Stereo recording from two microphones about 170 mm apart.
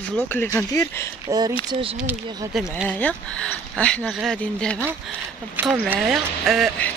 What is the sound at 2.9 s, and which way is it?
Speech, 10° left (ahead or behind).